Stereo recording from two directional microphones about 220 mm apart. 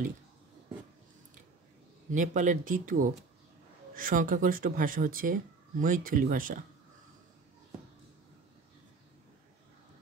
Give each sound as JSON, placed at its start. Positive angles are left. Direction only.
{"t": 2.0, "sound": "speech", "side_deg": -35}